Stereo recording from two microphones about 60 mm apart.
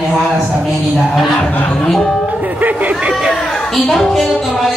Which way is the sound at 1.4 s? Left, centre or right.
Left.